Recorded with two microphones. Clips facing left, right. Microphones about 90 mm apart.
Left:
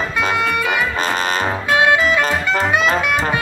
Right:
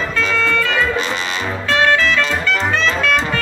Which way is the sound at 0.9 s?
45° left (ahead or behind).